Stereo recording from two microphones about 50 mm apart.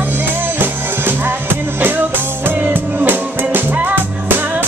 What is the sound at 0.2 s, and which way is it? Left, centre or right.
Music, right.